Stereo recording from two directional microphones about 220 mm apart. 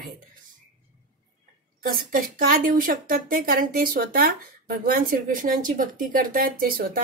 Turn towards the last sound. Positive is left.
turn(degrees=-40)  # may be behind; listen again after turning